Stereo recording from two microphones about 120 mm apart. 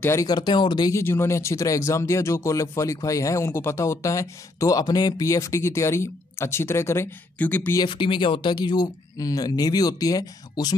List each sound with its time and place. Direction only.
0.0 s speech: 25° left (ahead or behind)
0.3 s speech: 40° left (ahead or behind)
0.9 s speech: 20° left (ahead or behind)
8.0 s speech: 45° left (ahead or behind)